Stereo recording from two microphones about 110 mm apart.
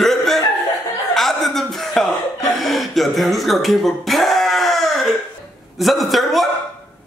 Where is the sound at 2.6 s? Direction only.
Centre (ahead or behind).